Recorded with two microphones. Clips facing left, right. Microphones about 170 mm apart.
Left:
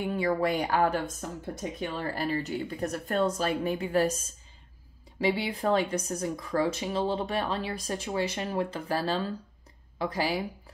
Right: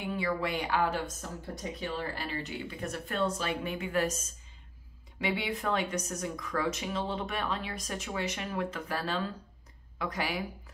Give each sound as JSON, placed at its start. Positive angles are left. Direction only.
{"t": 0.0, "sound": "speech", "side_deg": 45}